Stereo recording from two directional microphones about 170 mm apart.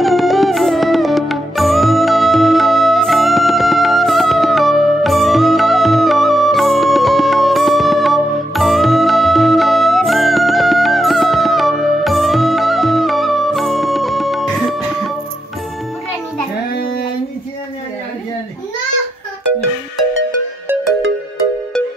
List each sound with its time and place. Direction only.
0.0 s music: centre (ahead or behind)